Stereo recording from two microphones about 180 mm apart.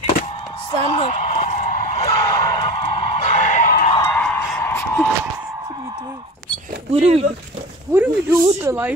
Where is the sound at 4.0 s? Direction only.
5° left (ahead or behind).